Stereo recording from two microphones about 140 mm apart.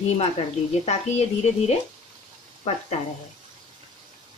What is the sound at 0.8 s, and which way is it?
A woman's voice, 50° left (ahead or behind).